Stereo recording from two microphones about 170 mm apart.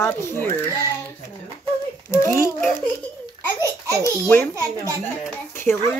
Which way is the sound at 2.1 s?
15° left (ahead or behind).